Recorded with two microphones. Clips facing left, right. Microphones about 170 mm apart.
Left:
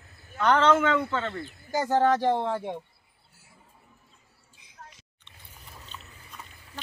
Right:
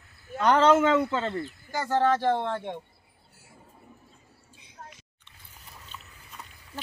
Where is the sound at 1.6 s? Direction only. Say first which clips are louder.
Left 2 dB; 15° left (ahead or behind).